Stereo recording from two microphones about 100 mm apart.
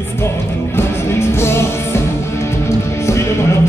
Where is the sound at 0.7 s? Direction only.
25° left (ahead or behind).